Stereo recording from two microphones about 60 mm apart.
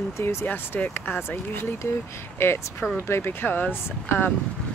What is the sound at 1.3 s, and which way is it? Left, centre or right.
Speech, left.